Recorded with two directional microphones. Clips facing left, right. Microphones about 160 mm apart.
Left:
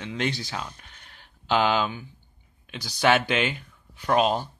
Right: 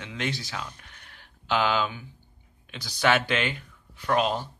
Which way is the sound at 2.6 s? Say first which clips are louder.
Left 2 dB; 15° left (ahead or behind).